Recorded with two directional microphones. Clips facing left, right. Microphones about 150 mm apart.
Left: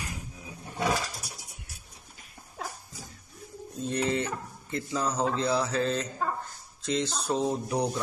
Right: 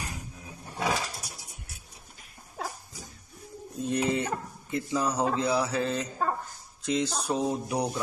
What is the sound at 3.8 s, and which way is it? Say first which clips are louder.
A man's voice: right 1 dB; 15° right (ahead or behind).